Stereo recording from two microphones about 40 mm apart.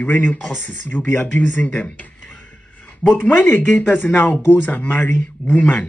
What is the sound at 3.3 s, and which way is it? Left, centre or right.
Speech, left.